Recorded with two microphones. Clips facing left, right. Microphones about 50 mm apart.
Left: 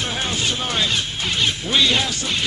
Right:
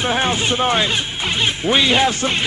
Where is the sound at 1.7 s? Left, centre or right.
Right.